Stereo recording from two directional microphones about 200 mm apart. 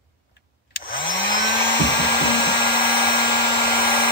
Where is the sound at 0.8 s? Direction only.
45° left (ahead or behind).